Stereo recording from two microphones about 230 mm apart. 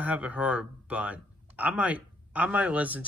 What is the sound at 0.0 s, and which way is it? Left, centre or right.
A man's voice, centre.